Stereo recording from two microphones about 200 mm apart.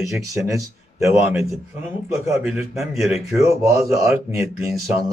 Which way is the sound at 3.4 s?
15° right (ahead or behind).